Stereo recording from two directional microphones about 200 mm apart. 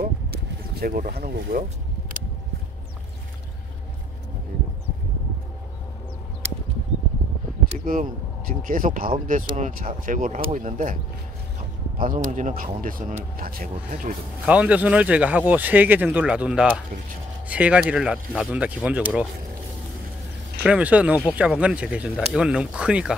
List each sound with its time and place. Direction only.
0.7 s speech: 45° right (ahead or behind)
7.8 s speech: 45° right (ahead or behind)
12.0 s speech: 40° right (ahead or behind)
14.4 s speech: 5° right (ahead or behind)
20.6 s speech: 5° right (ahead or behind)